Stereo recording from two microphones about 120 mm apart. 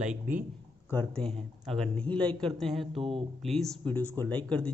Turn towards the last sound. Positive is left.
turn(degrees=10)  # may be behind; listen again after turning